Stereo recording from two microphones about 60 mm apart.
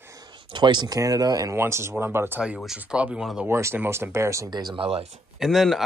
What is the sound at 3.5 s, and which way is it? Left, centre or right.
Speech, right.